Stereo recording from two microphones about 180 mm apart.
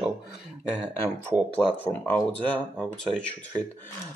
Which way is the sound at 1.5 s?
10° left (ahead or behind).